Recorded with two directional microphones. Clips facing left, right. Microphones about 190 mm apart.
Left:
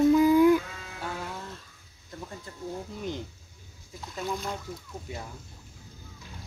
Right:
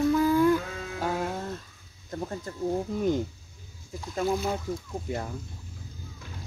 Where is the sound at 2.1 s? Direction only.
45° right (ahead or behind).